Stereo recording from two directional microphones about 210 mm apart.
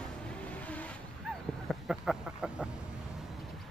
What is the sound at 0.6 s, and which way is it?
Vehicle, 5° left (ahead or behind).